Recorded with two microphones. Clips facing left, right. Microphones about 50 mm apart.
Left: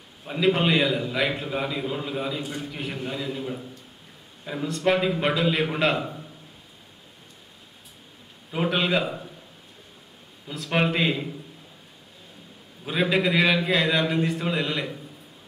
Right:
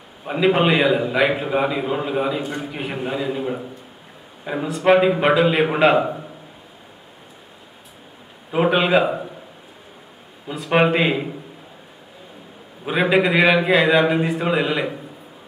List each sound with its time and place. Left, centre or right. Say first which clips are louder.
0.2 s a man's voice: right 5 dB; right
4.6 s a man's voice: right 7 dB; centre
6.0 s a sound: right 9 dB; right
8.5 s a man's voice: right 7 dB; right
10.4 s a man's voice: right 7 dB; centre
12.8 s a man's voice: right 6 dB; centre